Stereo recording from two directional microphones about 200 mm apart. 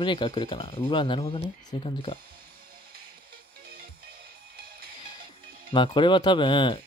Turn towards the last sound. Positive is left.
turn(degrees=25)  # may be behind; listen again after turning